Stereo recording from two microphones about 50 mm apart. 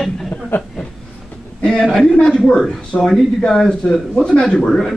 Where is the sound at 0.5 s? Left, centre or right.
Left.